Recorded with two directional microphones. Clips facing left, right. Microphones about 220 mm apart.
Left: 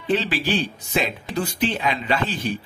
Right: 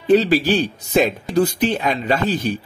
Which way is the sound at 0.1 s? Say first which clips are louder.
Right 8 dB; 40° right (ahead or behind).